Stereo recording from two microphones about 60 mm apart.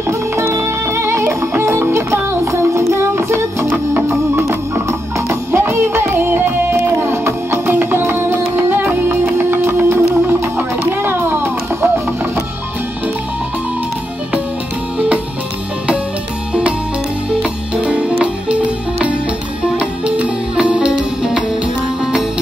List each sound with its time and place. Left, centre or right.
0.4 s music: right
3.6 s music: right
17.3 s music: centre
19.8 s music: centre